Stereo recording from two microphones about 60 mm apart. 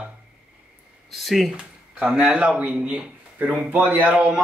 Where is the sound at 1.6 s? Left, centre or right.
Centre.